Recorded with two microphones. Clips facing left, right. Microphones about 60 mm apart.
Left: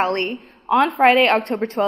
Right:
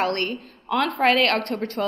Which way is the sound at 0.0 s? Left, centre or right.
Left.